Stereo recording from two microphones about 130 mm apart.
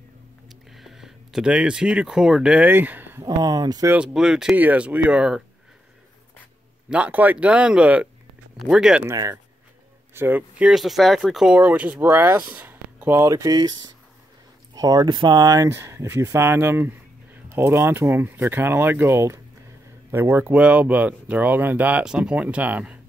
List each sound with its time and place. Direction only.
0.5 s speech: centre (ahead or behind)
3.3 s speech: 30° right (ahead or behind)
3.9 s speech: 5° right (ahead or behind)
6.9 s speech: 10° right (ahead or behind)
9.0 s speech: 25° right (ahead or behind)
10.7 s speech: centre (ahead or behind); by 13.3 s 15° right (ahead or behind)
13.3 s speech: 30° right (ahead or behind); by 22.9 s 10° right (ahead or behind)